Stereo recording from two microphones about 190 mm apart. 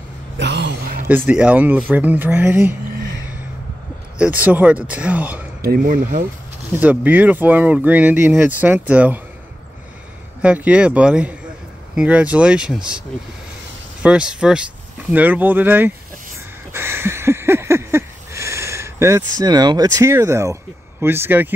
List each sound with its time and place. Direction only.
0.4 s a sound: 65° right (ahead or behind)
1.0 s speech: 10° right (ahead or behind)
4.2 s speech: 10° right (ahead or behind)
5.7 s speech: 45° right (ahead or behind)
6.8 s speech: 10° right (ahead or behind)
10.4 s speech: 5° right (ahead or behind)
14.0 s speech: 5° right (ahead or behind)
16.7 s a sound: 10° right (ahead or behind)
21.0 s speech: 10° right (ahead or behind)